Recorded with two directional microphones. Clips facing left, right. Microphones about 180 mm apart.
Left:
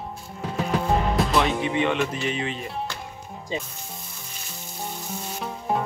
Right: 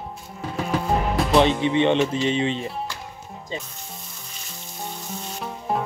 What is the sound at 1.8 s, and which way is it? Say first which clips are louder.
Speech: right 6 dB; 30° right (ahead or behind).